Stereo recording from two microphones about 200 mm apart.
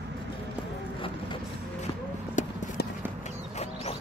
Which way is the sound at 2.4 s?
35° left (ahead or behind).